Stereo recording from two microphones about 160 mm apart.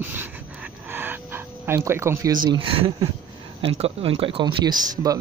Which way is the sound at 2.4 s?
35° right (ahead or behind).